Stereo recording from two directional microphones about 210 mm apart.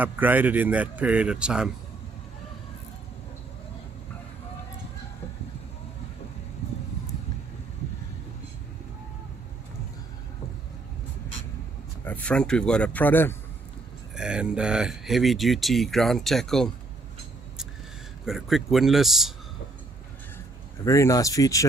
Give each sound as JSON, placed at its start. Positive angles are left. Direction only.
{"t": 0.0, "sound": "a man's voice", "side_deg": -10}
{"t": 12.0, "sound": "speech", "side_deg": 5}
{"t": 14.1, "sound": "speech", "side_deg": -5}
{"t": 18.2, "sound": "speech", "side_deg": 0}
{"t": 20.8, "sound": "speech", "side_deg": 15}